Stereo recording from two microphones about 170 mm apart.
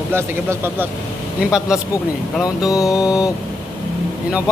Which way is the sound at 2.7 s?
20° left (ahead or behind).